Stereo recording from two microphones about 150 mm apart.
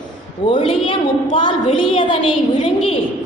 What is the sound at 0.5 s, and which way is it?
A woman's voice, 35° left (ahead or behind).